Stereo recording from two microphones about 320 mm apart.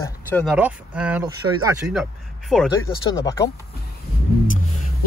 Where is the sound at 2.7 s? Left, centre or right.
Centre.